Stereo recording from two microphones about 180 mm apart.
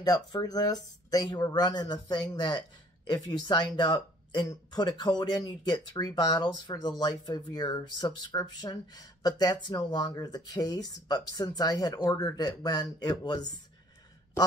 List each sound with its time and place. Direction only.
0.0 s speech: 20° left (ahead or behind)